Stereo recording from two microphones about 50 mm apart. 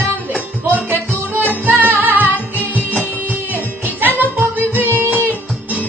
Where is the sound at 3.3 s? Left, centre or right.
Right.